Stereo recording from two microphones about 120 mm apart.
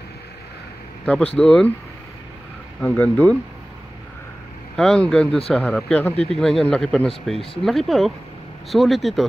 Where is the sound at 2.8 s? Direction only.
15° left (ahead or behind).